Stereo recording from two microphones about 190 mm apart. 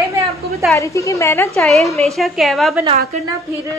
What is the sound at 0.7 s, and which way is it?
Speech, 15° left (ahead or behind).